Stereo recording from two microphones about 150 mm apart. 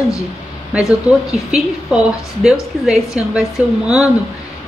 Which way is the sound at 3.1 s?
20° left (ahead or behind).